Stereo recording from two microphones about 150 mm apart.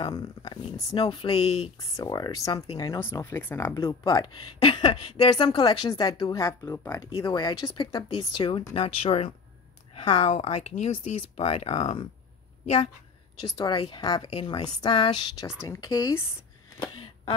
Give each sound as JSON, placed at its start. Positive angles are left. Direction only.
{"t": 0.0, "sound": "speech", "side_deg": 30}
{"t": 1.3, "sound": "speech", "side_deg": 45}
{"t": 2.0, "sound": "speech", "side_deg": 25}
{"t": 4.6, "sound": "speech", "side_deg": 30}
{"t": 13.6, "sound": "speech", "side_deg": 35}
{"t": 15.4, "sound": "speech", "side_deg": 15}